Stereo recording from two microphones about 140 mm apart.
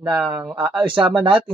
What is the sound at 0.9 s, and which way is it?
Speech, 35° right (ahead or behind).